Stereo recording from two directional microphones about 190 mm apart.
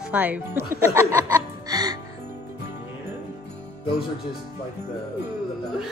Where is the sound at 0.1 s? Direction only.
10° right (ahead or behind).